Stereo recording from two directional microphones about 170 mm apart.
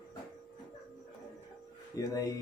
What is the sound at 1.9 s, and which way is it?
Speech, 20° left (ahead or behind).